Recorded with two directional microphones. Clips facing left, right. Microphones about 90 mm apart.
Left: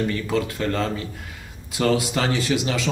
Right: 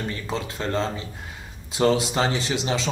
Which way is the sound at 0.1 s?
25° right (ahead or behind).